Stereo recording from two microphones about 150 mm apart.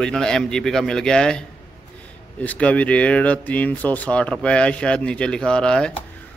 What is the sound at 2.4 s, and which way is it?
Speech, 10° left (ahead or behind).